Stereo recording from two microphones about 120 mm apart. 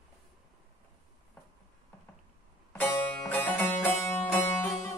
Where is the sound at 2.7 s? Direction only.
15° left (ahead or behind).